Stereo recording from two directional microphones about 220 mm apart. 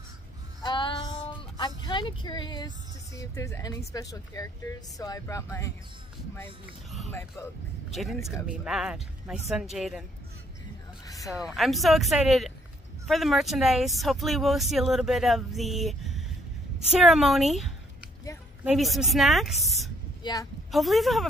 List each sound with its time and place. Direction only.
0.6 s music: 20° left (ahead or behind)
1.6 s a sound: 20° left (ahead or behind)
3.2 s speech: 15° left (ahead or behind)
6.6 s speech: centre (ahead or behind)
11.1 s a sound: 15° left (ahead or behind)
11.3 s speech: centre (ahead or behind)
20.2 s speech: 20° left (ahead or behind)
20.7 s speech: centre (ahead or behind)